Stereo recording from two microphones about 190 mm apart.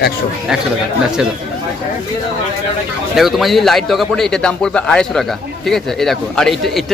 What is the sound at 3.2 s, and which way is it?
A man's voice, centre (ahead or behind).